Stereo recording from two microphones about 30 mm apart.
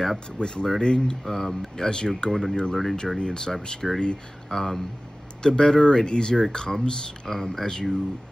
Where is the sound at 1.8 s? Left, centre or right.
Left.